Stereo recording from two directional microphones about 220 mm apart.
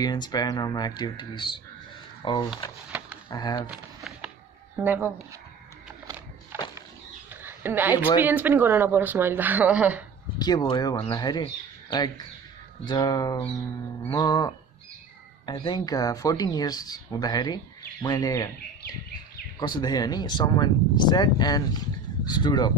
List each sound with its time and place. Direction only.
0.0 s speech: 20° left (ahead or behind)
3.7 s a sound: 5° right (ahead or behind)
4.8 s speech: 10° right (ahead or behind)
6.5 s a sound: 10° right (ahead or behind)
7.4 s a woman's voice: 10° right (ahead or behind)
10.4 s speech: 20° left (ahead or behind)
19.6 s speech: 20° left (ahead or behind)